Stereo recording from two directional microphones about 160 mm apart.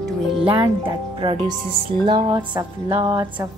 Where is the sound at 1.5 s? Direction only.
25° right (ahead or behind).